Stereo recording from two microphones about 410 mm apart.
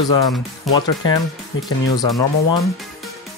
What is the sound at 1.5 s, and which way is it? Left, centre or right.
Speech, left.